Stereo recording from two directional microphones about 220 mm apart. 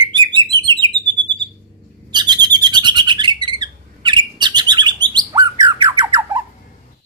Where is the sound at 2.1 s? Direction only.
20° right (ahead or behind).